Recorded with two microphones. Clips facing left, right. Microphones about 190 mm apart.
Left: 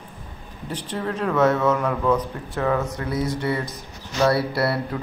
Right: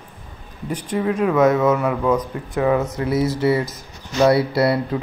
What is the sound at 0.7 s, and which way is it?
Speech, 10° right (ahead or behind).